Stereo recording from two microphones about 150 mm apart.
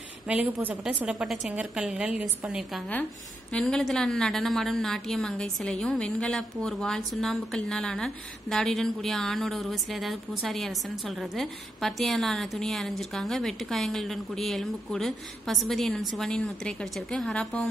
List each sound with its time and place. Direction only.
0.3 s a woman's voice: 10° right (ahead or behind); by 17.6 s 5° left (ahead or behind)